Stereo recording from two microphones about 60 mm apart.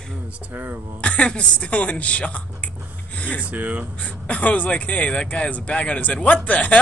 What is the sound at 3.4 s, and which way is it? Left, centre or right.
Speech, right.